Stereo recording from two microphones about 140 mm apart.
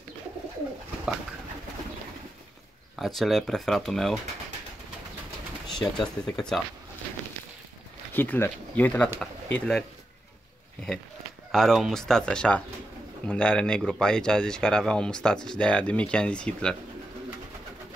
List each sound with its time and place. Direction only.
3.0 s speech: centre (ahead or behind)
5.7 s speech: 5° left (ahead or behind)
8.1 s speech: 15° left (ahead or behind)
11.5 s speech: centre (ahead or behind)